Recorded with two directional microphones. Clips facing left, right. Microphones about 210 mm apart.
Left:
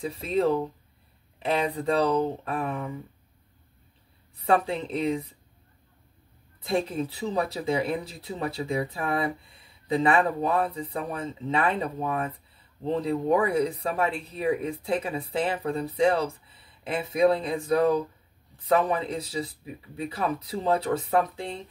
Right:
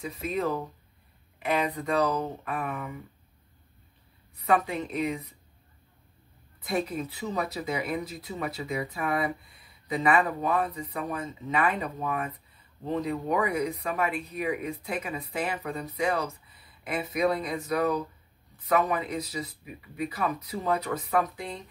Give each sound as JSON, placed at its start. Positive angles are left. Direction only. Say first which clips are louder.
{"t": 0.0, "sound": "speech", "louder": "left 5 dB", "side_deg": 30}
{"t": 4.4, "sound": "speech", "louder": "left 2 dB", "side_deg": 30}
{"t": 6.6, "sound": "speech", "louder": "left 3 dB", "side_deg": 30}